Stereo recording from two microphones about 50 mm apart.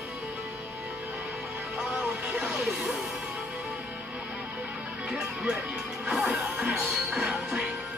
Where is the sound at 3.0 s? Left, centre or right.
Centre.